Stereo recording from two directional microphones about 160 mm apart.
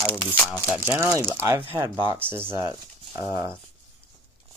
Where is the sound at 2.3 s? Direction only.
15° right (ahead or behind).